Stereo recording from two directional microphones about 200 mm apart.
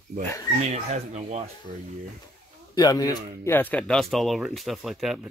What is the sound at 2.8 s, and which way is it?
Speech, 20° left (ahead or behind).